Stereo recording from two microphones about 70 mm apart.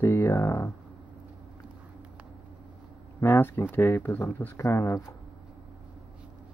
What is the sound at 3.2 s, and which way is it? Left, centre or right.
Speech, left.